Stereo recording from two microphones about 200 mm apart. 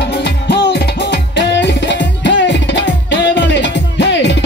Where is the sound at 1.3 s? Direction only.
60° left (ahead or behind).